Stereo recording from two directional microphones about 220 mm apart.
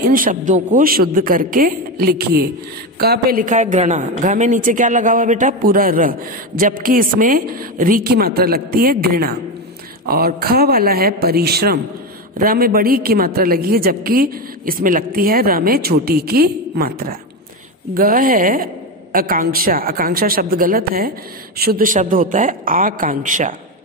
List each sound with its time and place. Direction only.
0.0 s a man's voice: 40° right (ahead or behind)